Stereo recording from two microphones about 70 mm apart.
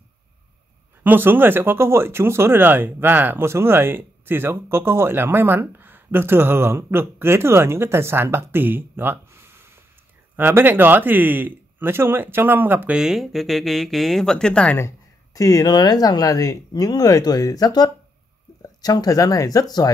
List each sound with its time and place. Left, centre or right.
1.0 s speech: right
12.9 s speech: centre
15.3 s speech: left